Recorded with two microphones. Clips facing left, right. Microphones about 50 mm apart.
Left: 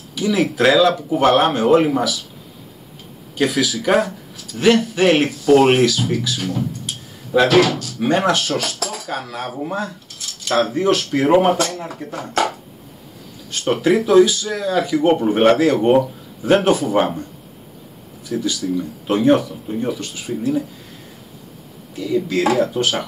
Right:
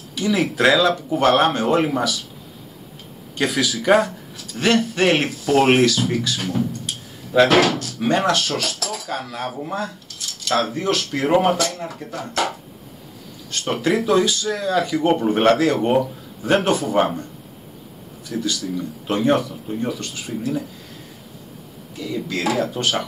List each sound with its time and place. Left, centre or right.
0.1 s speech: centre
3.3 s speech: centre
7.3 s speech: centre
11.8 s speech: left
13.7 s speech: centre
18.3 s speech: centre
19.2 s speech: centre
21.9 s speech: centre